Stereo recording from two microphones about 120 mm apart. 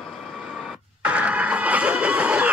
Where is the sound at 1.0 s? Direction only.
10° right (ahead or behind).